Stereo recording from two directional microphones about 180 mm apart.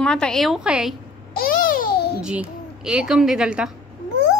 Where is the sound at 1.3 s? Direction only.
50° left (ahead or behind).